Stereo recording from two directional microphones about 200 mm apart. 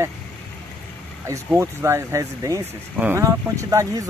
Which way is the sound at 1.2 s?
10° right (ahead or behind).